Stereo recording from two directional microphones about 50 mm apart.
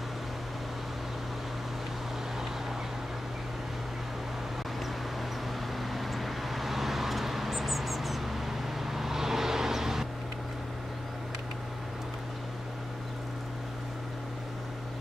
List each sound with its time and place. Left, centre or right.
5.8 s vehicle: centre